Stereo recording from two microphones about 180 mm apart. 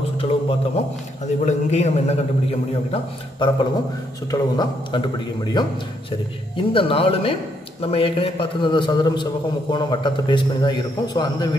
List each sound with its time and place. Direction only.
0.2 s a sound: 30° left (ahead or behind)
1.4 s speech: 40° left (ahead or behind)
2.9 s a man's voice: 25° left (ahead or behind)